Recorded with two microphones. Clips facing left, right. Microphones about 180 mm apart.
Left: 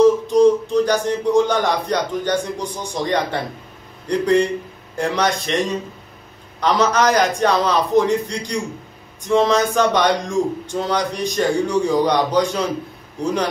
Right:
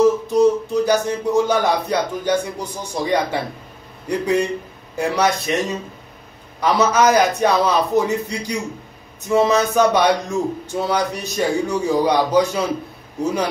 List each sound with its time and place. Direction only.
0.0 s a man's voice: 5° right (ahead or behind)